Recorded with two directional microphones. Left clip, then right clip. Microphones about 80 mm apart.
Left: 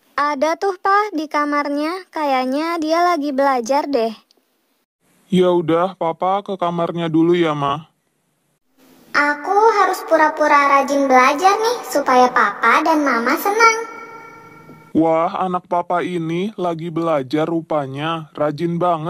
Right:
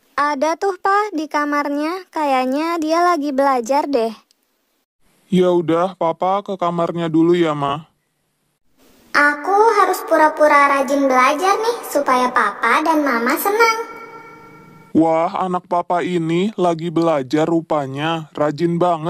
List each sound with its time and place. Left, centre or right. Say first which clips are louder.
0.1 s speech: even; centre
5.3 s speech: even; right
9.1 s a woman's voice: right 2 dB; right
14.9 s speech: even; right
15.7 s speech: right 2 dB; right
18.8 s speech: even; right